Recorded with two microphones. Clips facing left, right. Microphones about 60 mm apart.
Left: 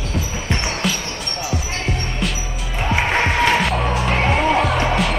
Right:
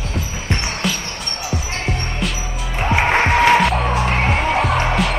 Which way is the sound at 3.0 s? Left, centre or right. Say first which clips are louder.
Right 3 dB; right.